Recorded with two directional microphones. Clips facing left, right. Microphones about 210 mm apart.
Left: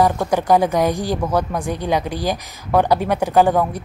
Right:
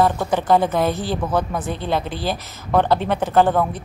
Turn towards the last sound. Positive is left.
turn(degrees=10)  # may be behind; listen again after turning